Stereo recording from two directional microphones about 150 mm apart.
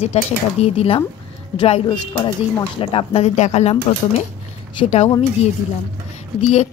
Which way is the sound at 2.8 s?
40° left (ahead or behind).